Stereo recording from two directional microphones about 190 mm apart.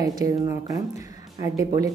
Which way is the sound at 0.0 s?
20° right (ahead or behind).